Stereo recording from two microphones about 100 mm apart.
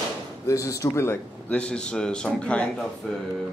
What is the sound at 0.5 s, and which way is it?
Speech, 35° left (ahead or behind).